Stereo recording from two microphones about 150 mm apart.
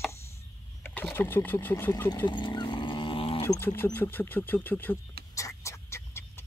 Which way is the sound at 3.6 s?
15° left (ahead or behind).